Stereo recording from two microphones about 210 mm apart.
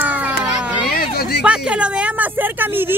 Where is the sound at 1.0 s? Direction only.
50° left (ahead or behind).